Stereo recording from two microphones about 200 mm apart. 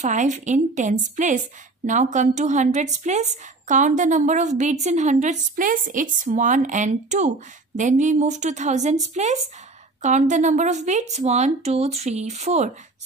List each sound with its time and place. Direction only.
0.0 s a woman's voice: 40° right (ahead or behind)